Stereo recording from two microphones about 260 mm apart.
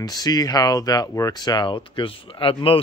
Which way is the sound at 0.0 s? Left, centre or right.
Centre.